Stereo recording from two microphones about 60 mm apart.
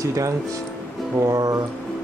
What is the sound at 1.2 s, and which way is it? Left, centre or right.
Speech, right.